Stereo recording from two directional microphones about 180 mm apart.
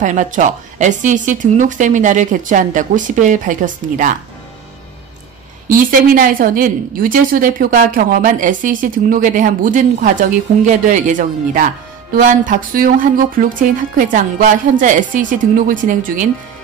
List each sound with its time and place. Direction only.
0.0 s a woman's voice: 45° right (ahead or behind)
5.7 s a woman's voice: 50° right (ahead or behind)